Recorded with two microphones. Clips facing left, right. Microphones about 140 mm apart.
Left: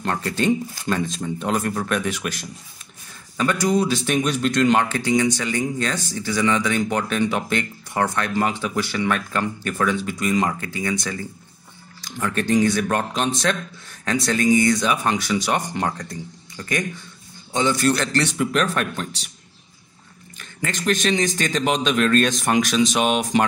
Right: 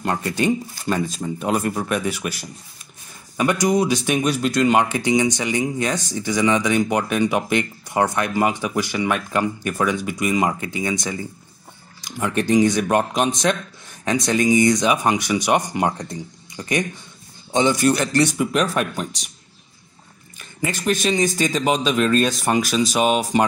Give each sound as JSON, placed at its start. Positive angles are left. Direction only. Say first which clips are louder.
{"t": 0.0, "sound": "speech", "louder": "right 1 dB", "side_deg": -10}
{"t": 20.3, "sound": "a man's voice", "louder": "right 2 dB", "side_deg": -10}